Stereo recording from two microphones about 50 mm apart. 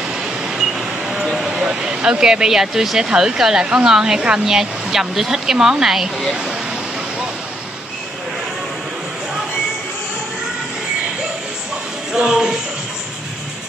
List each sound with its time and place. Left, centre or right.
0.1 s vehicle: centre
1.5 s speech: centre
12.2 s speech: centre